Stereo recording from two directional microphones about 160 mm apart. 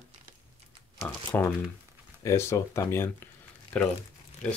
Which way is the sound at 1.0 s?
10° left (ahead or behind).